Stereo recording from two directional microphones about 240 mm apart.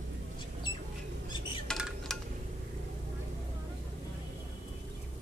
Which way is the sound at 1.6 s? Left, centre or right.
Centre.